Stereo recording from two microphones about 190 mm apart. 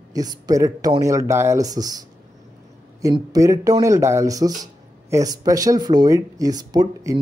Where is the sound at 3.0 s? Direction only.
20° right (ahead or behind).